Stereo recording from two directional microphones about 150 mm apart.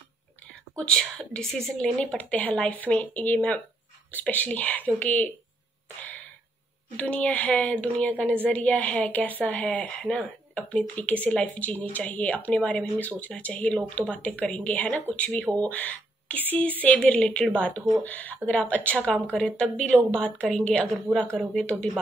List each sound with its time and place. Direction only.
0.7 s a woman's voice: 5° left (ahead or behind)
7.0 s a woman's voice: 10° left (ahead or behind)